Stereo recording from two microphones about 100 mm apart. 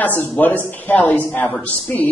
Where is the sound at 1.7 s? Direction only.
5° left (ahead or behind).